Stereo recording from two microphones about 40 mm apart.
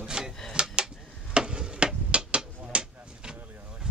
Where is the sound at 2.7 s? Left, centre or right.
Right.